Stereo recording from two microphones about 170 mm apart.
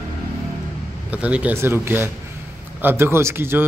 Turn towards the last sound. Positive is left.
turn(degrees=-15)  # may be behind; listen again after turning